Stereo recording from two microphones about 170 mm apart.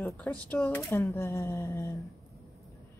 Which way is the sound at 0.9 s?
20° left (ahead or behind).